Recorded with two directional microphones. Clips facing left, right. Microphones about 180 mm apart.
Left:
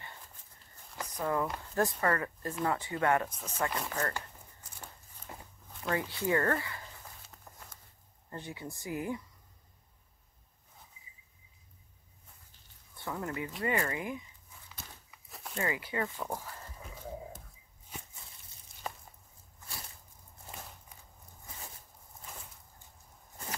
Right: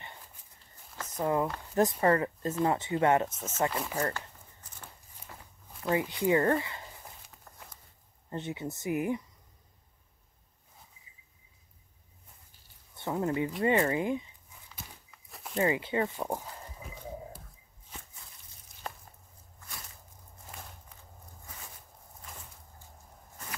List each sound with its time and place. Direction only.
1.1 s speech: 20° right (ahead or behind)
3.7 s speech: 10° right (ahead or behind)
5.3 s walk: 20° left (ahead or behind)
5.9 s speech: 15° right (ahead or behind)
7.5 s a sound: 15° left (ahead or behind)
8.3 s speech: 20° right (ahead or behind)
12.9 s speech: 20° right (ahead or behind)
15.0 s walk: centre (ahead or behind)
15.5 s speech: 25° right (ahead or behind)